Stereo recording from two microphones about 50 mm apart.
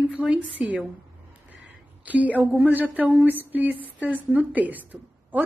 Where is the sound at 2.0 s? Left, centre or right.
Right.